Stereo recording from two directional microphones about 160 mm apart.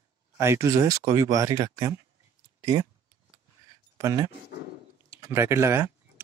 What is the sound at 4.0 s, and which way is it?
Speech, 20° right (ahead or behind).